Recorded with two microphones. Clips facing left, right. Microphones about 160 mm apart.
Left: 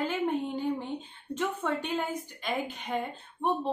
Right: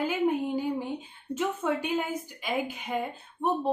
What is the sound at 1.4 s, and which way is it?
A woman's voice, 10° right (ahead or behind).